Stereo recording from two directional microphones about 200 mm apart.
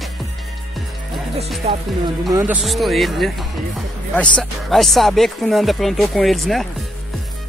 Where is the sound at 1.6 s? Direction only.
30° right (ahead or behind).